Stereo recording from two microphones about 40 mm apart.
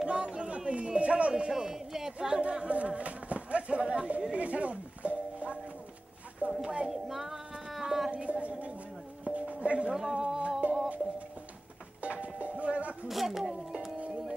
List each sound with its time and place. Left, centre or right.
0.0 s a sound: right
1.5 s speech: centre
2.6 s speech: right
3.0 s a sound: right
6.4 s speech: right
6.9 s a sound: centre
8.1 s a sound: right
9.2 s music: right
9.9 s speech: centre
10.6 s music: right
12.0 s music: right
13.1 s speech: centre